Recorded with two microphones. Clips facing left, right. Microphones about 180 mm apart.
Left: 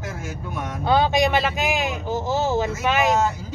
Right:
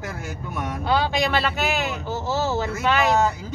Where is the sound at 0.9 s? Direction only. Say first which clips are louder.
Left 4 dB; 20° left (ahead or behind).